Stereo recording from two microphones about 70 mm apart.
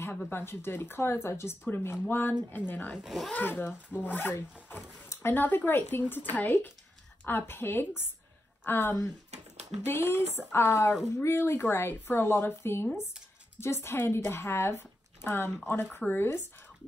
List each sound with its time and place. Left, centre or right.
0.3 s speech: left
3.0 s speech: centre
3.4 s speech: left